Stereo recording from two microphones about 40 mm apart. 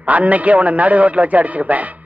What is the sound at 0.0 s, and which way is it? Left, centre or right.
A man's voice, right.